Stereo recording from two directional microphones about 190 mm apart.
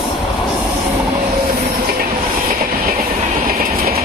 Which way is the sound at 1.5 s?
50° right (ahead or behind).